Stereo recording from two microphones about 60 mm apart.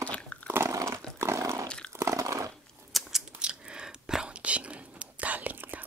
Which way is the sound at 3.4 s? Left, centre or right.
Centre.